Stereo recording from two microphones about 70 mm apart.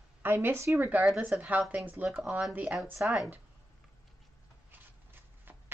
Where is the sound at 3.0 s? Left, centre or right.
Centre.